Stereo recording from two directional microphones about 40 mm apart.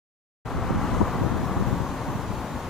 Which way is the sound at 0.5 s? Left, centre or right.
Centre.